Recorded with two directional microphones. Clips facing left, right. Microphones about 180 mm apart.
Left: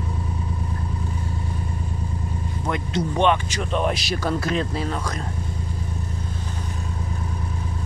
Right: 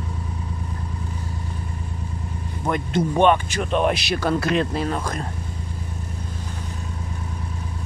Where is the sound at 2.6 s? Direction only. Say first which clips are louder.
Right 3 dB; 50° right (ahead or behind).